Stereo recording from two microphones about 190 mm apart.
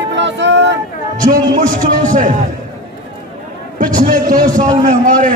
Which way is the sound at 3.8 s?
45° right (ahead or behind).